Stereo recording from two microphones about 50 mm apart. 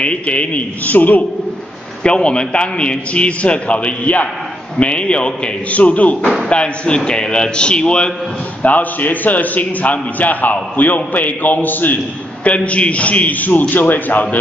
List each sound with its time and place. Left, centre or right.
0.0 s a man's voice: left
2.0 s a man's voice: left
8.6 s a man's voice: left
12.4 s a man's voice: left